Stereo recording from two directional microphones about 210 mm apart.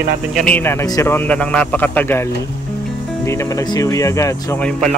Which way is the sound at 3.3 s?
15° left (ahead or behind).